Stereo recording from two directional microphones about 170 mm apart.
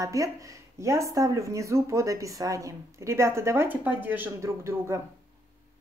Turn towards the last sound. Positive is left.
turn(degrees=-15)  # may be behind; listen again after turning